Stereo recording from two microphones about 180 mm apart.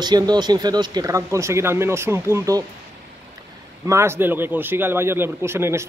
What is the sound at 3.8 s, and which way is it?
Speech, 15° right (ahead or behind).